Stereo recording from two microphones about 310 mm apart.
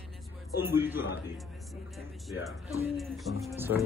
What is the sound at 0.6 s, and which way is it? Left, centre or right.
Speech, centre.